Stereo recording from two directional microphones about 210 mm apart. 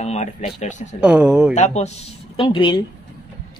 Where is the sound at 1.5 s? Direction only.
35° left (ahead or behind).